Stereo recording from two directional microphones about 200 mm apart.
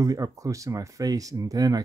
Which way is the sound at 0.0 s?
15° right (ahead or behind).